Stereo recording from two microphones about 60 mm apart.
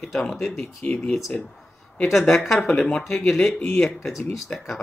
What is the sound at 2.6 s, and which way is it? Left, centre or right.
Speech, centre.